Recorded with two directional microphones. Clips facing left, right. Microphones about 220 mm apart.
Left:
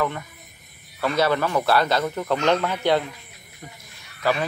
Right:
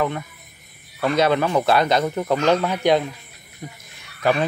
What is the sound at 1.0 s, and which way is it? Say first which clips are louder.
Speech: right 3 dB; 20° right (ahead or behind).